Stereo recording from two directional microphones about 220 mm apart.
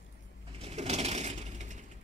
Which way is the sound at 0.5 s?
25° right (ahead or behind).